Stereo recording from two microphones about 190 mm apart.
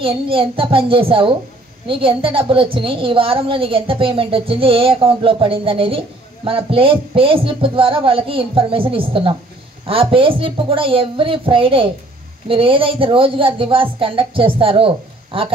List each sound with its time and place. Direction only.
0.0 s a woman's voice: 30° right (ahead or behind)